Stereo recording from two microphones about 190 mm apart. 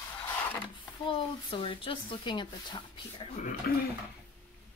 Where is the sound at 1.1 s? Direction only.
25° left (ahead or behind).